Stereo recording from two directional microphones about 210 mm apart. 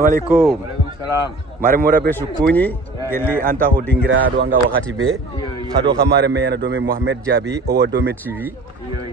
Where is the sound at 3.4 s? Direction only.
45° right (ahead or behind).